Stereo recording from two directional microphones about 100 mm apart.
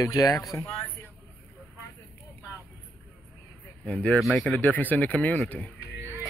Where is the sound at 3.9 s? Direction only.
15° left (ahead or behind).